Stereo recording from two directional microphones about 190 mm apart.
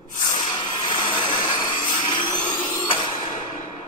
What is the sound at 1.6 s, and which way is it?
Vacuum cleaner, 25° left (ahead or behind).